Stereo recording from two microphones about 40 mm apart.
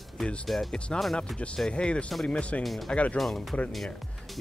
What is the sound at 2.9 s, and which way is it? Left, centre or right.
Speech, left.